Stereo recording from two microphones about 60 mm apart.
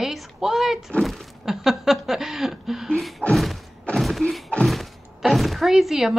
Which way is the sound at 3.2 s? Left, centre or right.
Left.